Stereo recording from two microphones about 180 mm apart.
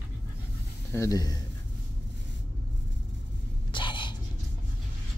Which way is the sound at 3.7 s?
25° left (ahead or behind).